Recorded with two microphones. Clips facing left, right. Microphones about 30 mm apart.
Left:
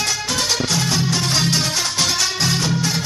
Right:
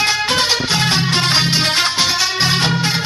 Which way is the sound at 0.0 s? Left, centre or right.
Right.